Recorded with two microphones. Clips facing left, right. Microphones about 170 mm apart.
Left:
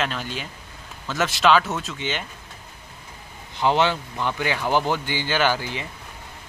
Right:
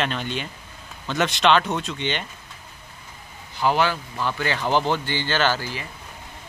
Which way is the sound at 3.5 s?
20° left (ahead or behind).